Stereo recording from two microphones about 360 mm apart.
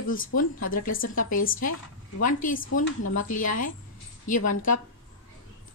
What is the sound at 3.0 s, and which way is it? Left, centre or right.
Speech, left.